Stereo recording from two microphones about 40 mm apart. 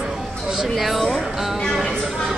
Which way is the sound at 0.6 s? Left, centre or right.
Centre.